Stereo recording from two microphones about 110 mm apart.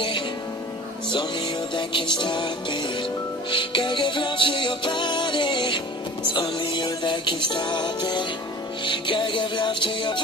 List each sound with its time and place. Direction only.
1.8 s music: 45° left (ahead or behind)